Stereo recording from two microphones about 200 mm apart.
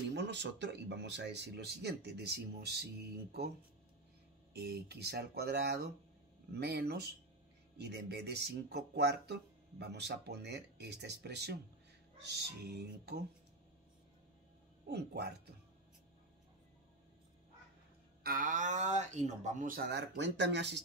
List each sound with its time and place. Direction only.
0.1 s speech: 60° right (ahead or behind)
4.6 s speech: 55° right (ahead or behind)
14.9 s speech: 55° right (ahead or behind)
18.2 s speech: 45° right (ahead or behind); by 20.8 s 60° right (ahead or behind)